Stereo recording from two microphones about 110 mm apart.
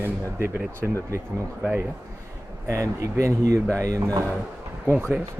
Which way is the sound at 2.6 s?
30° right (ahead or behind).